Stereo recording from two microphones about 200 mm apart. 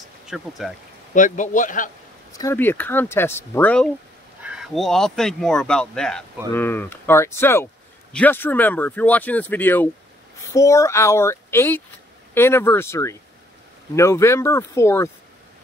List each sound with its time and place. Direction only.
0.3 s speech: centre (ahead or behind)
1.1 s speech: 40° left (ahead or behind)
2.3 s speech: 15° left (ahead or behind)
4.4 s speech: 5° right (ahead or behind); by 15.0 s 15° left (ahead or behind)